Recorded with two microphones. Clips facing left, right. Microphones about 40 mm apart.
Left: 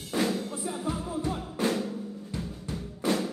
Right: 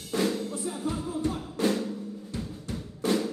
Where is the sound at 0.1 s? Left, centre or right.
Centre.